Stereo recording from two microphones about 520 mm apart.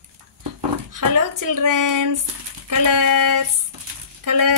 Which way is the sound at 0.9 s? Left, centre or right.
Right.